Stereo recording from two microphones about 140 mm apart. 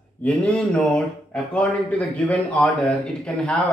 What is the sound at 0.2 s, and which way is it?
Speech, 10° left (ahead or behind).